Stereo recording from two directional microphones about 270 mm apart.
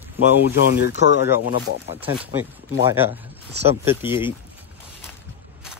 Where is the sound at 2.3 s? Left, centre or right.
Centre.